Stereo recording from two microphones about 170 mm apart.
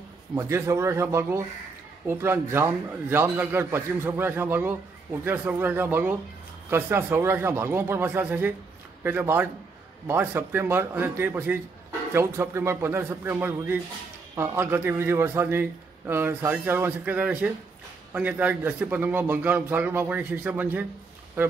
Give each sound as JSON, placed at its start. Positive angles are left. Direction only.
{"t": 0.3, "sound": "a man's voice", "side_deg": -15}